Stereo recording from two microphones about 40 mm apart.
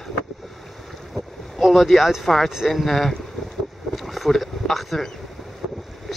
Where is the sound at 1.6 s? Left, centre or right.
Centre.